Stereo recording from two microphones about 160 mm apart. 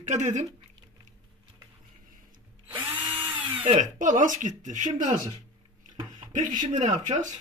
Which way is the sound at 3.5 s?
50° right (ahead or behind).